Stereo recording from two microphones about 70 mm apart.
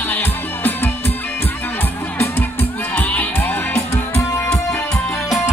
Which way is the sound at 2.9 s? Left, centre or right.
Left.